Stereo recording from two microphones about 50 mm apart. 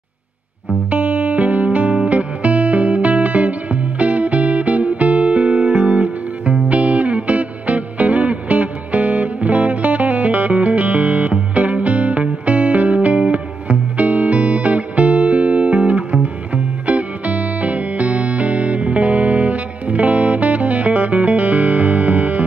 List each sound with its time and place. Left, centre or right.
0.8 s music: right